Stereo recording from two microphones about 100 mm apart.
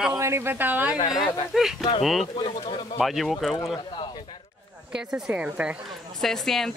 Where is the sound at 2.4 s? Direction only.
60° left (ahead or behind).